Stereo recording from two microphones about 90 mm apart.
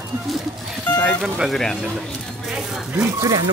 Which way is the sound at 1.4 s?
5° left (ahead or behind).